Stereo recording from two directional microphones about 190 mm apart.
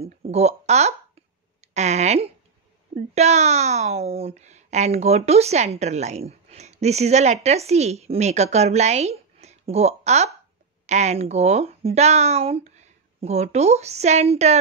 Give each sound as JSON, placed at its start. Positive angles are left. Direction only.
{"t": 0.0, "sound": "speech", "side_deg": -35}
{"t": 1.6, "sound": "a sound", "side_deg": -35}
{"t": 3.2, "sound": "a woman's voice", "side_deg": -35}